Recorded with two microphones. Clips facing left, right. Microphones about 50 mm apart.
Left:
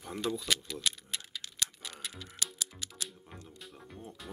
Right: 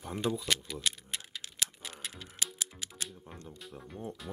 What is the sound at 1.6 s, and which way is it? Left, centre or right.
Typewriter, centre.